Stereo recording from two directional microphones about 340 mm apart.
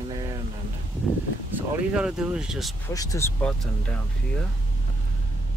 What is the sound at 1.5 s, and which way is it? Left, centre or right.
Speech, centre.